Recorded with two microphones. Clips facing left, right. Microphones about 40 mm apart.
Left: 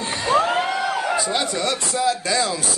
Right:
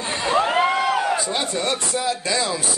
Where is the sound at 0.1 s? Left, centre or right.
Right.